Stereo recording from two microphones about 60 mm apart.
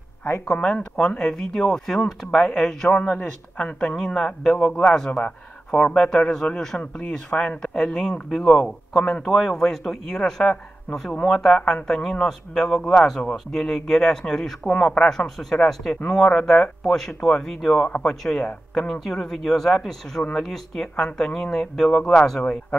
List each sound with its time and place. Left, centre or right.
0.5 s speech: centre
3.9 s speech: centre